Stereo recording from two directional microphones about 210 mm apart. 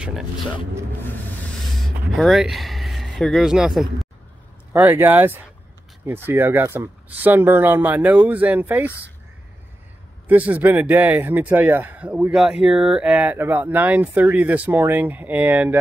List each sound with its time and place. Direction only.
2.1 s speech: centre (ahead or behind)
4.7 s speech: 10° right (ahead or behind)
10.2 s speech: 5° right (ahead or behind)